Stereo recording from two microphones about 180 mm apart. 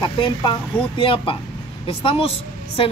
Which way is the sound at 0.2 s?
25° left (ahead or behind).